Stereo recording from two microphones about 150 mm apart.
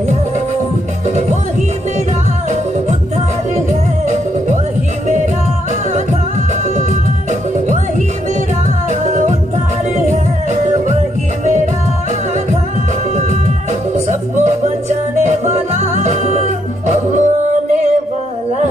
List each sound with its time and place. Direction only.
1.0 s music: 50° right (ahead or behind)
5.0 s music: 55° right (ahead or behind)
6.8 s music: 55° right (ahead or behind)
10.0 s music: 55° right (ahead or behind)
13.9 s music: 50° right (ahead or behind)